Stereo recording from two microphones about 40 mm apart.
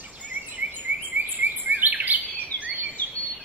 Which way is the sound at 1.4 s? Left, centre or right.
Right.